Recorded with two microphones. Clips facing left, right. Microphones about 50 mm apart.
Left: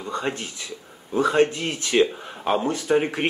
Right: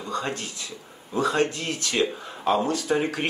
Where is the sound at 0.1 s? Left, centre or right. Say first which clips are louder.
Left 2 dB; left.